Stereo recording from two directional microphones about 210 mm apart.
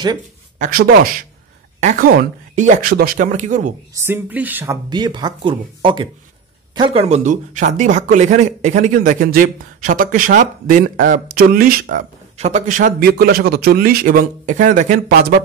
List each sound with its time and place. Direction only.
0.6 s speech: 45° right (ahead or behind)
3.9 s speech: 10° right (ahead or behind)
4.8 s speech: 20° right (ahead or behind); by 15.4 s 45° right (ahead or behind)